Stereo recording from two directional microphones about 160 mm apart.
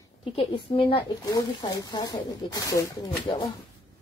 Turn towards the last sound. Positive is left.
turn(degrees=20)  # may be behind; listen again after turning